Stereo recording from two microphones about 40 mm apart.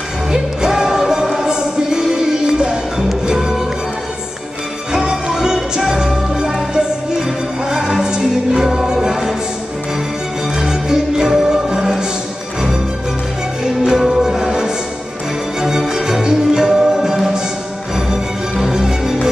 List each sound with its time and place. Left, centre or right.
0.3 s music: centre
4.9 s music: centre
10.6 s music: centre
13.7 s music: centre